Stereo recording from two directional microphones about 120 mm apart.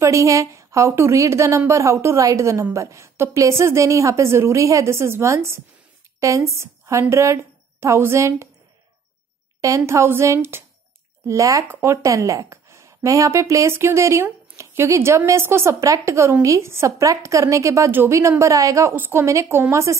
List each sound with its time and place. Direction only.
0.0 s a woman's voice: 25° right (ahead or behind)
9.6 s speech: 25° right (ahead or behind)